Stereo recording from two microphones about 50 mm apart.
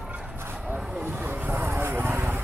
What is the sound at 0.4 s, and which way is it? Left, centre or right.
Bow-wow, right.